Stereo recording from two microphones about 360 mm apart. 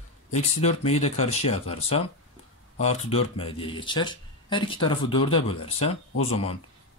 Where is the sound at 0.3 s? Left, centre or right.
Centre.